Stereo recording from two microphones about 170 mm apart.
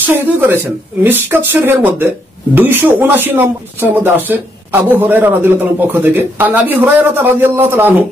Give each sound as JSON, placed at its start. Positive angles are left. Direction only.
{"t": 0.0, "sound": "speech", "side_deg": -10}